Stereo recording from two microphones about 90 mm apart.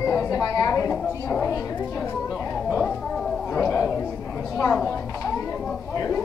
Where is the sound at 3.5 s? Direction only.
30° left (ahead or behind).